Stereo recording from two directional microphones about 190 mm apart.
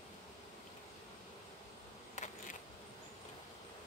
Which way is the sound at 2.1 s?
40° left (ahead or behind).